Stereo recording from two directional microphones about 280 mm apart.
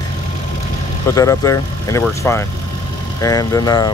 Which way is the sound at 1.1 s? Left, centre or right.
Centre.